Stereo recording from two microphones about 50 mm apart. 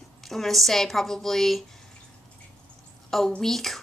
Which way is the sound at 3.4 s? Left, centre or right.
Centre.